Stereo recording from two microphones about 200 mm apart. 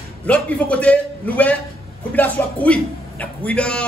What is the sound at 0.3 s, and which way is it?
A man's voice, 5° left (ahead or behind).